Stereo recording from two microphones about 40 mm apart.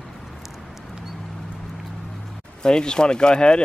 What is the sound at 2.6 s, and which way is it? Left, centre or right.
Speech, left.